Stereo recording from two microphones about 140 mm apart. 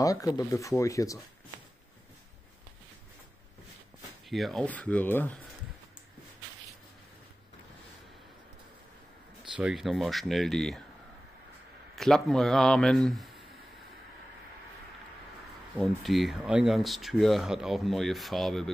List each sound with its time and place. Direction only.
0.0 s speech: 25° left (ahead or behind)
4.3 s speech: centre (ahead or behind)
4.6 s speech: 10° left (ahead or behind)
9.4 s speech: 5° right (ahead or behind)
11.9 s speech: 5° left (ahead or behind)
15.8 s speech: centre (ahead or behind)